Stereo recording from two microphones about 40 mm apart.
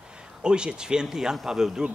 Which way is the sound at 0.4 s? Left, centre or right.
Right.